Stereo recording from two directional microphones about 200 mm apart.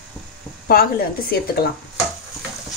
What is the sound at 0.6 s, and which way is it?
Speech, 50° left (ahead or behind).